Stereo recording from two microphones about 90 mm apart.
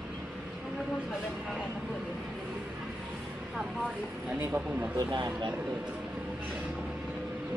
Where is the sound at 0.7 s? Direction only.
5° right (ahead or behind).